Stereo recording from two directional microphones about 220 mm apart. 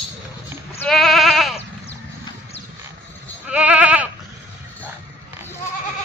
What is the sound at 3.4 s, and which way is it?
Goat, 5° right (ahead or behind).